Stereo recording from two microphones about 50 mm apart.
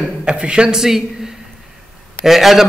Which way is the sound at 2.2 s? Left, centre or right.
Centre.